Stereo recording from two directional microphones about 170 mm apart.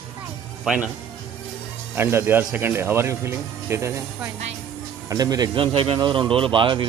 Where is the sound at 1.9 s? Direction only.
15° right (ahead or behind).